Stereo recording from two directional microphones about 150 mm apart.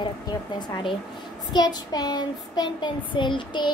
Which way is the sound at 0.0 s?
30° left (ahead or behind).